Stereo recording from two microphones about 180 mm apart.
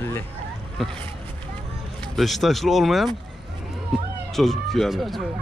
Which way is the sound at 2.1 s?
Centre (ahead or behind).